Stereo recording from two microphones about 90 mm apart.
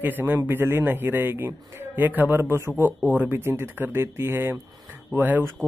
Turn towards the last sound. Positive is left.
turn(degrees=-25)  # may be behind; listen again after turning